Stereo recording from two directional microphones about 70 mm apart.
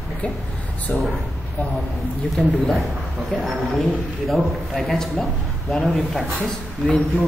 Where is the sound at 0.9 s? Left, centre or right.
Left.